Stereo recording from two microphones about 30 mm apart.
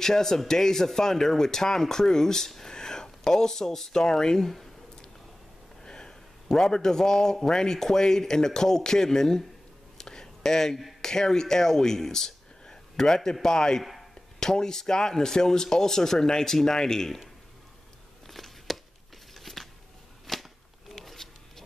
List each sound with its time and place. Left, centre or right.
0.0 s speech: centre
2.7 s speech: left
5.9 s a man's voice: left
9.9 s a sound: left
11.0 s a man's voice: centre
18.2 s a sound: centre